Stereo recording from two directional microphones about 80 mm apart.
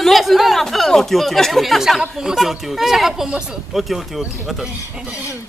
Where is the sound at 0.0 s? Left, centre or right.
Centre.